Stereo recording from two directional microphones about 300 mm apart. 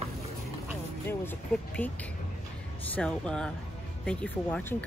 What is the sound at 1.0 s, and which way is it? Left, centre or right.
Speech, centre.